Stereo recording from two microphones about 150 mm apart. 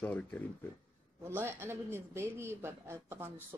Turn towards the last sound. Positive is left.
turn(degrees=-15)  # may be behind; listen again after turning